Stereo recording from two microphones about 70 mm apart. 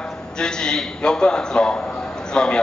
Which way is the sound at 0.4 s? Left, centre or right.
Centre.